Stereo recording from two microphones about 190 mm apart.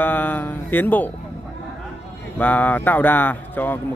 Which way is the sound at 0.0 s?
10° left (ahead or behind).